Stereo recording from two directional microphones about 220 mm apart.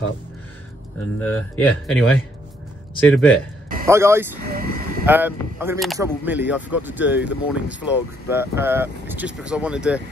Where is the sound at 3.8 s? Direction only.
10° right (ahead or behind).